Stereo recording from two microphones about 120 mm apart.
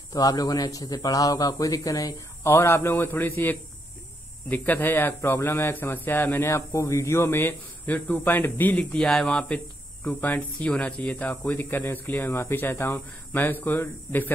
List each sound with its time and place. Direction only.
0.1 s speech: 30° left (ahead or behind); by 3.5 s 15° left (ahead or behind)
4.8 s speech: 20° left (ahead or behind)